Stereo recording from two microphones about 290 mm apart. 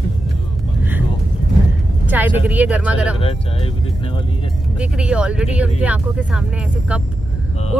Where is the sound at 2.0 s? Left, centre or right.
Centre.